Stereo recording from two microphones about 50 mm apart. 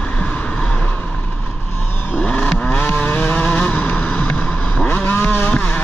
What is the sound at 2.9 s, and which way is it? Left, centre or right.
Vehicle, left.